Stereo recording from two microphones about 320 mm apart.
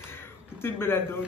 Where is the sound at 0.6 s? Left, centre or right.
Centre.